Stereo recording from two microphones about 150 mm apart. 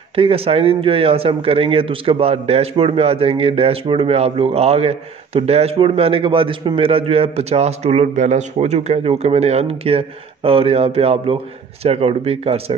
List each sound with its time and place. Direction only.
0.1 s speech: 40° right (ahead or behind)